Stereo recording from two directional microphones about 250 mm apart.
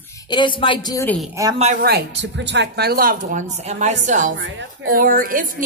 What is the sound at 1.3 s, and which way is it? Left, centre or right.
Speech, centre.